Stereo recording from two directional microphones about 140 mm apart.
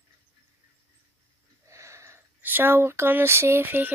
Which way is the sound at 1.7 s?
20° right (ahead or behind).